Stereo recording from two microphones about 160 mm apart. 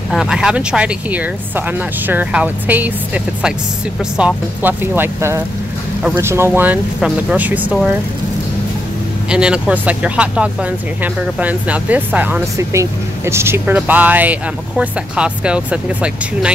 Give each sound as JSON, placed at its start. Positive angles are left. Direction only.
{"t": 0.1, "sound": "speech", "side_deg": -5}
{"t": 4.2, "sound": "speech", "side_deg": -10}
{"t": 9.3, "sound": "speech", "side_deg": -5}